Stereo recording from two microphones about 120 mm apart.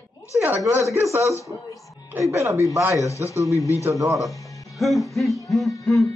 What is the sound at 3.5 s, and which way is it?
Speech, 25° left (ahead or behind).